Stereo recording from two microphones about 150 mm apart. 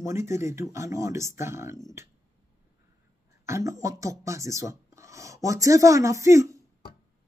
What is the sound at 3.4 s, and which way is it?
Speech, 20° right (ahead or behind).